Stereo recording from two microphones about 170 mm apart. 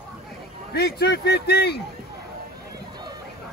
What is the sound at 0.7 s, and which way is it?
Speech, 70° left (ahead or behind).